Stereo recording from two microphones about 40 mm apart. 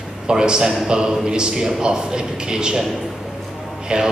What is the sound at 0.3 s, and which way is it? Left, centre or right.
A man's voice, centre.